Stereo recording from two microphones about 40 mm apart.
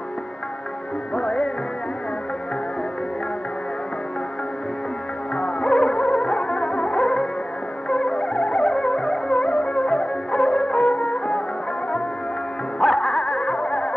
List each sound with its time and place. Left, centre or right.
1.1 s music: left
5.3 s music: left
12.8 s music: centre